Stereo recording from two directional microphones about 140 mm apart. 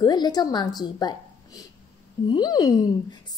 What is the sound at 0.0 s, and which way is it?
A woman's voice, 30° left (ahead or behind).